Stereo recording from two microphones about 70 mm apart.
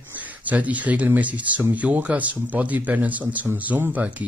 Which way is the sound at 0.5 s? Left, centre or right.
Right.